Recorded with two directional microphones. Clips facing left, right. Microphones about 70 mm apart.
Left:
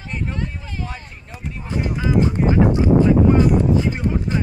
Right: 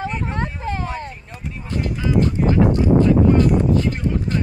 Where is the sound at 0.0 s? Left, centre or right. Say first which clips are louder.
Right 3 dB; right.